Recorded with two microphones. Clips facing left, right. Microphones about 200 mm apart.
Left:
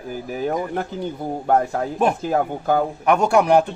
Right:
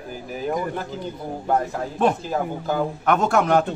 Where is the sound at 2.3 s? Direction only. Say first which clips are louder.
Left 4 dB; 55° left (ahead or behind).